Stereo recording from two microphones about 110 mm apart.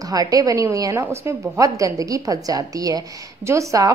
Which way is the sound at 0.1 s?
35° right (ahead or behind).